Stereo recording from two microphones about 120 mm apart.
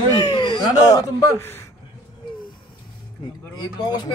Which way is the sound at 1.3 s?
20° left (ahead or behind).